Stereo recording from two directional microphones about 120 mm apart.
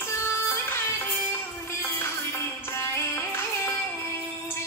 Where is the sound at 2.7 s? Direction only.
20° left (ahead or behind).